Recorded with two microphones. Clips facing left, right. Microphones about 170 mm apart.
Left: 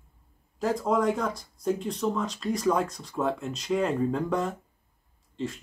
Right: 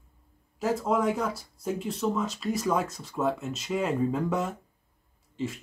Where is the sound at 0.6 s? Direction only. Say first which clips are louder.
Left 1 dB; 5° right (ahead or behind).